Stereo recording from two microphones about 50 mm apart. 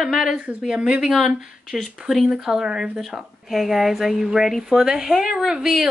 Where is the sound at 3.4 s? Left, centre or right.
Centre.